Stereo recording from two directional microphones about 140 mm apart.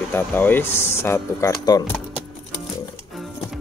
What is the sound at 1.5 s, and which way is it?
Speech, 30° left (ahead or behind).